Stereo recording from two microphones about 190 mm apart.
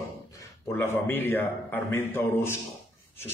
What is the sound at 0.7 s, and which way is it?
A man's voice, 10° left (ahead or behind).